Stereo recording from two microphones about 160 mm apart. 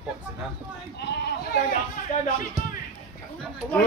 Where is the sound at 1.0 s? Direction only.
90° left.